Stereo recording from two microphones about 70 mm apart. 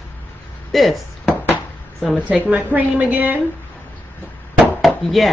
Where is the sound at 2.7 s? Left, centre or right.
Right.